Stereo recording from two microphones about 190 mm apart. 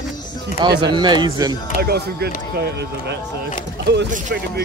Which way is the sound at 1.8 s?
55° right (ahead or behind).